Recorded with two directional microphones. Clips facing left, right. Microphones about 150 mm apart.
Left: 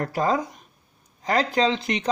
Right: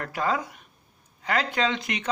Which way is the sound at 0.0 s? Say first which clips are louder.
Left 4 dB; 35° left (ahead or behind).